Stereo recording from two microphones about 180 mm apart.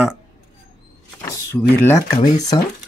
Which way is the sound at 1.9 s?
15° left (ahead or behind).